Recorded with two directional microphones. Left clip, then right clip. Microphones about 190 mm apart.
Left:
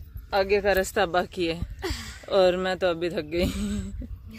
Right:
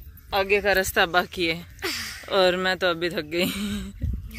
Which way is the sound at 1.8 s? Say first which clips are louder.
Right 4 dB; 20° left (ahead or behind).